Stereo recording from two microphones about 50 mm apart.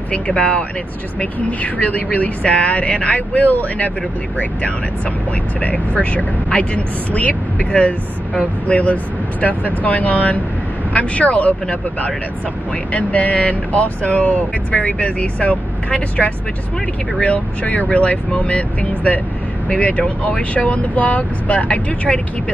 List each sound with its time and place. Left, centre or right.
0.1 s speech: left
5.6 s speech: left
12.9 s speech: left